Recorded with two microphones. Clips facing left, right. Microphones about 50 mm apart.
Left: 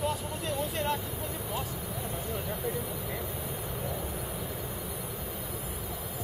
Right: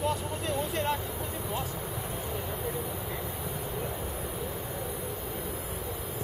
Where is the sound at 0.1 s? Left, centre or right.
Centre.